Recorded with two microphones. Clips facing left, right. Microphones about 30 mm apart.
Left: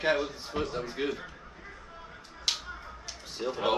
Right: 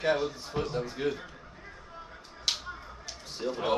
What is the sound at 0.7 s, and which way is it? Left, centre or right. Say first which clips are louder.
Speech: right 1 dB; centre.